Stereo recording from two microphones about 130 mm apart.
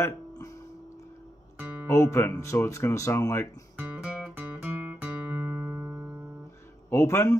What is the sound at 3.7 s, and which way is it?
Music, 10° right (ahead or behind).